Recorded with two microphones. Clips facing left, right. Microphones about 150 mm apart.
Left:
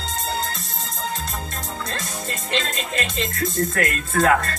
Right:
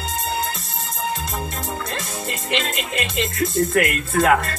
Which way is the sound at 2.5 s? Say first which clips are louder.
Right 1 dB; 20° right (ahead or behind).